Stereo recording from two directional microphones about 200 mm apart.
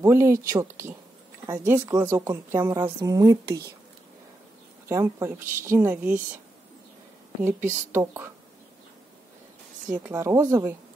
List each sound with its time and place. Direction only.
0.0 s a woman's voice: 15° right (ahead or behind)
3.4 s speech: 55° right (ahead or behind)
4.8 s a woman's voice: 15° right (ahead or behind)
7.4 s a woman's voice: 10° right (ahead or behind)
10.0 s a woman's voice: 15° right (ahead or behind)